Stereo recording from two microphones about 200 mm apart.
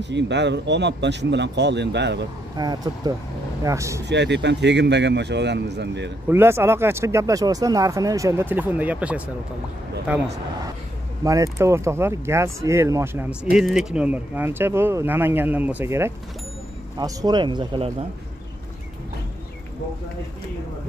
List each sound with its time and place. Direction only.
0.0 s speech: 60° right (ahead or behind)
2.5 s speech: 20° right (ahead or behind)
4.0 s speech: 60° right (ahead or behind)
6.2 s speech: 10° right (ahead or behind)
11.2 s speech: 15° right (ahead or behind)